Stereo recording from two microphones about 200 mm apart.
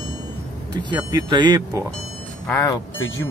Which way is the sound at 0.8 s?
20° right (ahead or behind).